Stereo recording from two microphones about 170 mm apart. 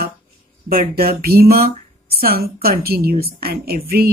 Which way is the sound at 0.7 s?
60° right (ahead or behind).